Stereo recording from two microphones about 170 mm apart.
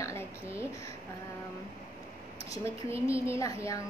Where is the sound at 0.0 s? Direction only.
15° left (ahead or behind).